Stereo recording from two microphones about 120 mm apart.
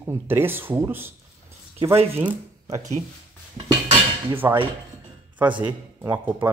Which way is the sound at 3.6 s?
50° right (ahead or behind).